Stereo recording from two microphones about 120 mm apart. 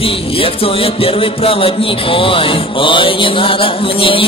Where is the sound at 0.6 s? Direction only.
50° left (ahead or behind).